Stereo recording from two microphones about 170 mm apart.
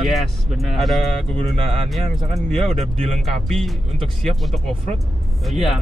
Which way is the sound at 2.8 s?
35° right (ahead or behind).